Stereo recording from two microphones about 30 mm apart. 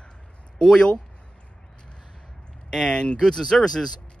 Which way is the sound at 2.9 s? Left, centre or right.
Left.